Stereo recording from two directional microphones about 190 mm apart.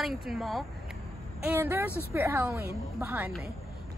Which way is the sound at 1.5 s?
10° right (ahead or behind).